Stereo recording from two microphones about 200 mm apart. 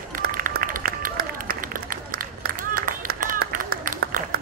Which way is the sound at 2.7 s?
45° right (ahead or behind).